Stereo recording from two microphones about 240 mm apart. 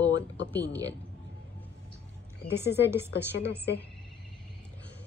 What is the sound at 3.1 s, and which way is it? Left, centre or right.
Speech, left.